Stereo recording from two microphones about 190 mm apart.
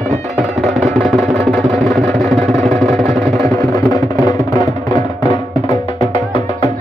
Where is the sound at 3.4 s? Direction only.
20° left (ahead or behind).